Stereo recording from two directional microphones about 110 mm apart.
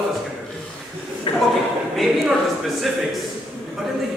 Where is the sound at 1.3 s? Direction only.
55° left (ahead or behind).